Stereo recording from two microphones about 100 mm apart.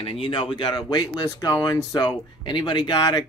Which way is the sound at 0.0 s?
70° left (ahead or behind).